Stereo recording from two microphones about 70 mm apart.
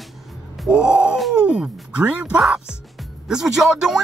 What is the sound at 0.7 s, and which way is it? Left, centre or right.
Cat, centre.